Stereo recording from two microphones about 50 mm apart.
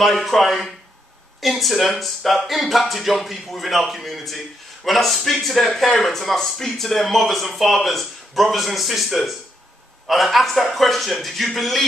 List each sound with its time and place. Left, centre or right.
0.0 s a man's voice: centre